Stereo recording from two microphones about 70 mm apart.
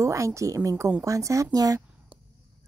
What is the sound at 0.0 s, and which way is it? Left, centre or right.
A woman's voice, right.